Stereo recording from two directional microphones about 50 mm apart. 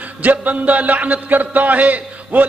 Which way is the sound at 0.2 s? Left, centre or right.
Right.